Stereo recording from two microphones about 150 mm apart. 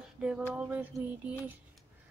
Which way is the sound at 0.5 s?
10° right (ahead or behind).